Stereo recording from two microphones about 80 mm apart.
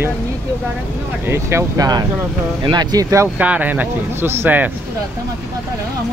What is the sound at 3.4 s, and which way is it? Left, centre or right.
Speech, centre.